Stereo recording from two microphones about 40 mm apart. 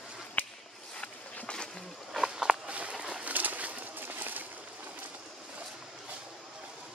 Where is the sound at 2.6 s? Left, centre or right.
Right.